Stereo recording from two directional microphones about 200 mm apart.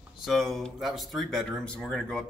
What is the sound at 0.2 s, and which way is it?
Speech, centre (ahead or behind).